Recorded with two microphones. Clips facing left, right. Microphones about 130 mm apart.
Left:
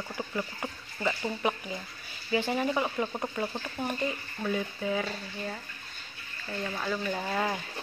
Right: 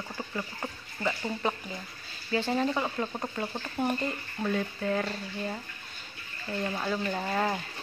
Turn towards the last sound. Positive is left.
turn(degrees=0)  # may be behind; listen again after turning